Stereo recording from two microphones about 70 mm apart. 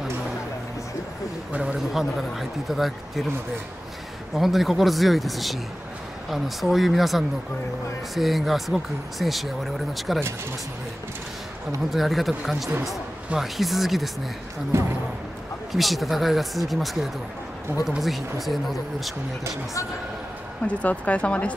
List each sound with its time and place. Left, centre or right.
1.5 s speech: centre
1.9 s speech: centre
4.4 s speech: centre
11.9 s speech: centre
14.7 s speech: right
15.7 s speech: centre
20.6 s speech: centre